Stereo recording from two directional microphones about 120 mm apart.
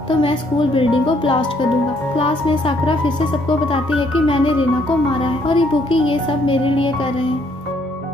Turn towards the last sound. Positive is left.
turn(degrees=45)  # may be behind; listen again after turning